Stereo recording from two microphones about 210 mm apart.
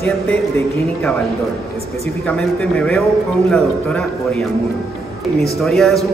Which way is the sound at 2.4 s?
Centre (ahead or behind).